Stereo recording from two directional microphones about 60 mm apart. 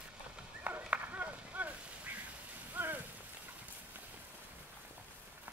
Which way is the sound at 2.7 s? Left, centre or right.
Right.